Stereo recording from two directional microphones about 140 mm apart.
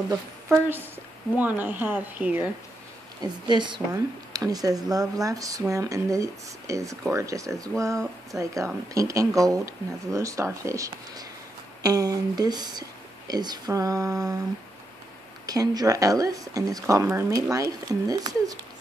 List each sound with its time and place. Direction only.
0.5 s speech: 15° right (ahead or behind)
3.2 s a woman's voice: 30° right (ahead or behind)
15.4 s speech: 25° right (ahead or behind)